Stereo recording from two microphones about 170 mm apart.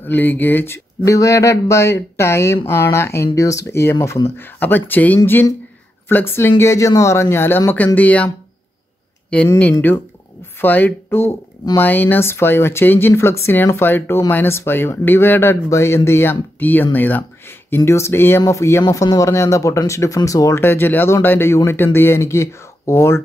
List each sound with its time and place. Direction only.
0.0 s speech: 10° left (ahead or behind)
9.6 s speech: 10° left (ahead or behind)